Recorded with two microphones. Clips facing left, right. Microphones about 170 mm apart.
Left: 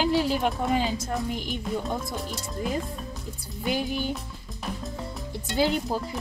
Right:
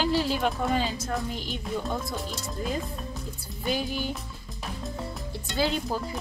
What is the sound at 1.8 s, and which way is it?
Speech, centre (ahead or behind).